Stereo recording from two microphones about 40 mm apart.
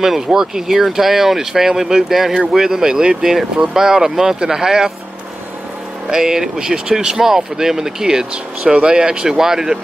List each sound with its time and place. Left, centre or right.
0.0 s speech: centre
6.0 s speech: centre